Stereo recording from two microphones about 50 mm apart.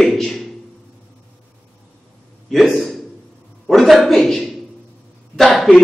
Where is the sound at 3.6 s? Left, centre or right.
Centre.